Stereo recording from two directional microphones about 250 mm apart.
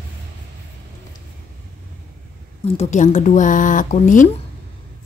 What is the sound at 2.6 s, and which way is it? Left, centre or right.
Speech, left.